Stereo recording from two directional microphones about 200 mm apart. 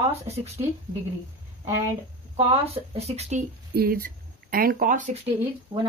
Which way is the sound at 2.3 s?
30° right (ahead or behind).